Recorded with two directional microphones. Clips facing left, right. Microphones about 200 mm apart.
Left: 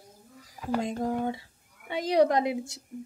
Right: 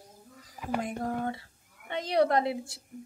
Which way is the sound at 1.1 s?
15° left (ahead or behind).